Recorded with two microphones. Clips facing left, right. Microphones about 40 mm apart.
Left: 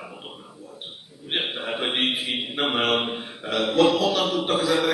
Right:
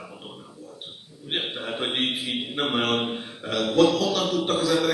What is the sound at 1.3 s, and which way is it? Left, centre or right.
A man's voice, centre.